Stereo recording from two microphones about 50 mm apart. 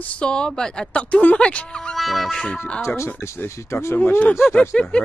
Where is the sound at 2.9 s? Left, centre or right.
Left.